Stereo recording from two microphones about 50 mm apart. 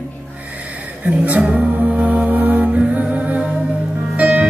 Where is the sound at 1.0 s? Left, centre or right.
Right.